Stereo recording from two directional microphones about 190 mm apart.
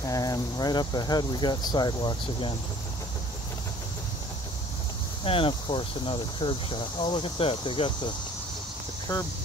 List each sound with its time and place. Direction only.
0.0 s speech: 20° left (ahead or behind)
5.2 s speech: 30° left (ahead or behind)
9.1 s speech: 20° left (ahead or behind)